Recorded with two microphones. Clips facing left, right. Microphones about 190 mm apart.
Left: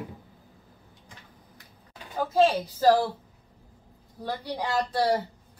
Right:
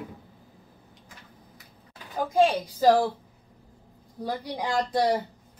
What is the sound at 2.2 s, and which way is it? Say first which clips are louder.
Speech: even; 15° right (ahead or behind).